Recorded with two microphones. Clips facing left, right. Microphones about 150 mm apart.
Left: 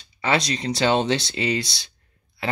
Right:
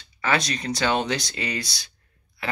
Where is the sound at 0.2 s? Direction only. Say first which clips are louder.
Left 2 dB; 20° left (ahead or behind).